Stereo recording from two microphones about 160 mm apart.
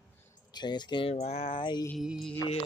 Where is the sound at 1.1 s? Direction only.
40° left (ahead or behind).